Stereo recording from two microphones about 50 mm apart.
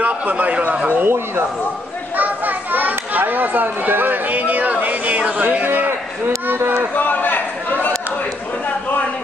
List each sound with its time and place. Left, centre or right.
0.0 s speech: right
1.0 s a man's voice: right
2.1 s children playing: right
5.5 s a man's voice: right
5.9 s a man's voice: right
7.0 s a sound: left